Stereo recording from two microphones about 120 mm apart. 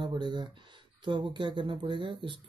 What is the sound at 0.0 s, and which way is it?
Speech, 40° right (ahead or behind).